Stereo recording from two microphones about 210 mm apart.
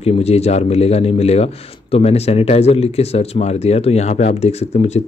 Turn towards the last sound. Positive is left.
turn(degrees=30)  # may be behind; listen again after turning